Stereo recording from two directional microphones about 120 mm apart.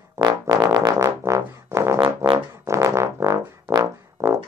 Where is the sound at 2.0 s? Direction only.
40° right (ahead or behind).